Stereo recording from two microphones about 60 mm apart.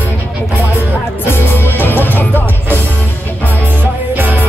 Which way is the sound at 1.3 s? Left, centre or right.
Left.